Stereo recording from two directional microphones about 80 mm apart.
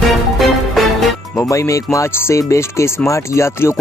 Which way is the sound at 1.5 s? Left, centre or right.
Left.